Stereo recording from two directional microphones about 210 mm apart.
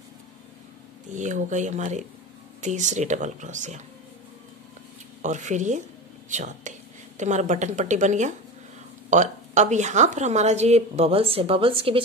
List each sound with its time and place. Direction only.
1.1 s speech: 35° right (ahead or behind)
5.2 s speech: 35° right (ahead or behind)